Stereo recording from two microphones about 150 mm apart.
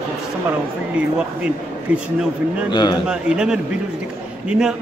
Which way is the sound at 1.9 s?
10° right (ahead or behind).